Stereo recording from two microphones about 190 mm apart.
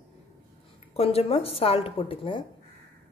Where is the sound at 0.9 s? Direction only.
30° left (ahead or behind).